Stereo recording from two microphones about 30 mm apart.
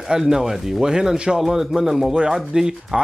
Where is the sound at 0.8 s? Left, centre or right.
Right.